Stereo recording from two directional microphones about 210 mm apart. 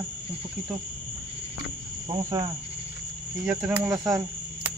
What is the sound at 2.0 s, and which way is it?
Speech, 20° right (ahead or behind).